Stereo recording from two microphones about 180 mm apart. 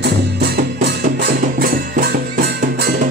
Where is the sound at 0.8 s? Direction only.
60° right (ahead or behind).